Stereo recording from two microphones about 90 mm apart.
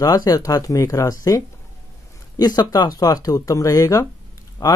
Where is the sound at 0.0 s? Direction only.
45° left (ahead or behind).